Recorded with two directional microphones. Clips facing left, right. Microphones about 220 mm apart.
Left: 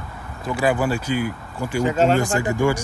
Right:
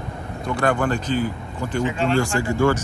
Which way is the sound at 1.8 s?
40° left (ahead or behind).